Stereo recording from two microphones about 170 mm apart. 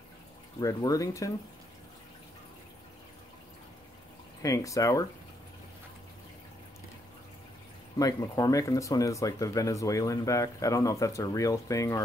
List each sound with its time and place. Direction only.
0.6 s speech: 20° left (ahead or behind)
4.4 s speech: 20° left (ahead or behind)
8.0 s speech: 20° left (ahead or behind)